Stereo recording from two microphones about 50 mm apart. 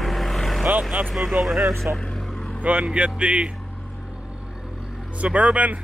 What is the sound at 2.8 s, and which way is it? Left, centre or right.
Speech, centre.